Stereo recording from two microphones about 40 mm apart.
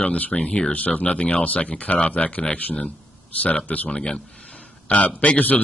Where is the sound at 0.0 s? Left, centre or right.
Left.